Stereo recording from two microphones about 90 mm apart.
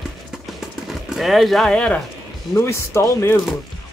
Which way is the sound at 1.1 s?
Centre (ahead or behind).